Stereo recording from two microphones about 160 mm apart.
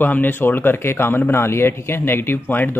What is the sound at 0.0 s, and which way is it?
Speech, 10° left (ahead or behind).